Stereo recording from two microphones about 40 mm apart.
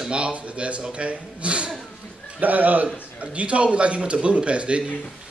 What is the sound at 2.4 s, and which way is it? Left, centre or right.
Speech, right.